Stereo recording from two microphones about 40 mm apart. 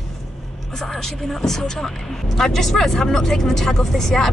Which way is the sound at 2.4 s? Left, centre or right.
Centre.